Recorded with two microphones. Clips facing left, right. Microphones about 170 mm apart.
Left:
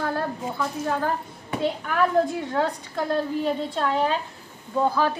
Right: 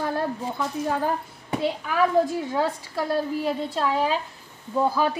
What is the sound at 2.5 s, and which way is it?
A woman's voice, 5° right (ahead or behind).